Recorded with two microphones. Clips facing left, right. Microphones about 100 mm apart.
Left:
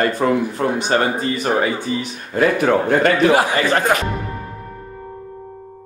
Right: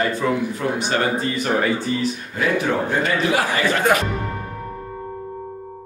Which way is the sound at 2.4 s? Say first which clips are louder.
Left 5 dB; 55° left (ahead or behind).